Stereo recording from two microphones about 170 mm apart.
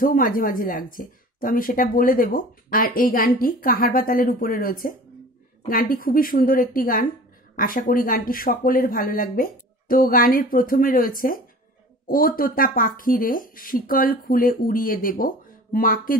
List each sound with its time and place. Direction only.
0.0 s speech: 55° left (ahead or behind)